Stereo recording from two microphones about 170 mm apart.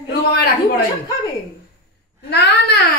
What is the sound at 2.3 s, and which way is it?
Speech, 75° left (ahead or behind).